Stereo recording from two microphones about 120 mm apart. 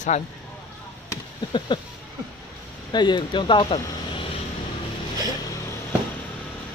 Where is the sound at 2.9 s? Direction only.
40° left (ahead or behind).